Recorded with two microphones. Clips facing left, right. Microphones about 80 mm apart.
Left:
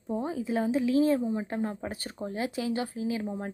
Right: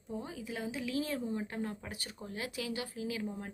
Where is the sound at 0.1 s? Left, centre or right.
Left.